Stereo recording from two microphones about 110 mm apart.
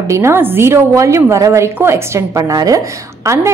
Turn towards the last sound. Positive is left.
turn(degrees=-25)  # may be behind; listen again after turning